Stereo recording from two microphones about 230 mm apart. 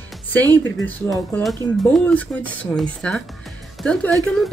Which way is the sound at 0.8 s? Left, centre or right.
Centre.